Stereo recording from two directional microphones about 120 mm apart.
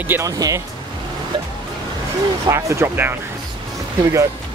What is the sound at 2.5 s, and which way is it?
Speech, 25° right (ahead or behind).